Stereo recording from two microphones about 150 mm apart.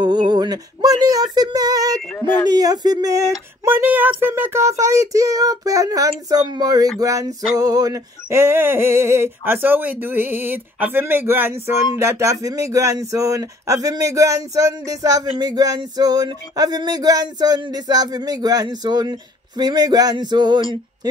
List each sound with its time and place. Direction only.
0.0 s female singing: 30° right (ahead or behind)
2.0 s speech: 15° left (ahead or behind)
2.5 s speech: 25° right (ahead or behind)
7.0 s male singing: 20° right (ahead or behind)
12.0 s speech: 20° right (ahead or behind)